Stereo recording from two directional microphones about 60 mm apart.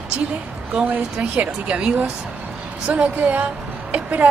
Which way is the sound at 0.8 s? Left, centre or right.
Right.